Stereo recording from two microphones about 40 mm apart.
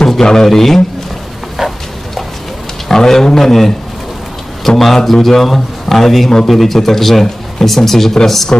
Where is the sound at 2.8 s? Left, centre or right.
Centre.